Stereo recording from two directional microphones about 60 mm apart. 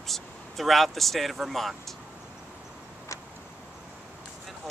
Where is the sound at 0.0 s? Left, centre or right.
Centre.